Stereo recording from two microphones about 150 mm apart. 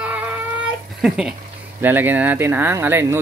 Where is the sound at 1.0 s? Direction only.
5° right (ahead or behind).